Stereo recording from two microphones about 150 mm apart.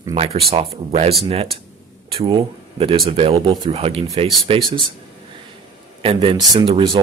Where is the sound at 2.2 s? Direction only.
40° right (ahead or behind).